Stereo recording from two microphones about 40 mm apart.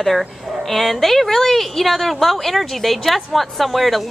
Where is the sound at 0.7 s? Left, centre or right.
Centre.